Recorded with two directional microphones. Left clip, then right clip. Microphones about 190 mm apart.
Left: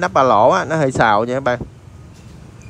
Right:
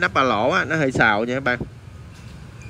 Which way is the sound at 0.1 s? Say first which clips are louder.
Left 6 dB; 30° left (ahead or behind).